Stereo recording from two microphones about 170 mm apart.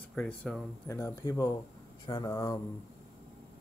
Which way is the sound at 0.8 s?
15° left (ahead or behind).